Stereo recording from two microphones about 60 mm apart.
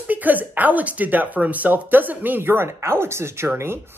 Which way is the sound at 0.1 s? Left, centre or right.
Right.